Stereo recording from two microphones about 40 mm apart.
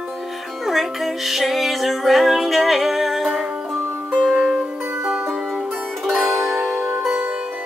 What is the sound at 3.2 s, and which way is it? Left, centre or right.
Music, centre.